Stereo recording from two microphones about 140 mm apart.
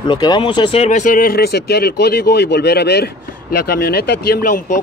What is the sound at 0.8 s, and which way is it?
Speech, 65° left (ahead or behind).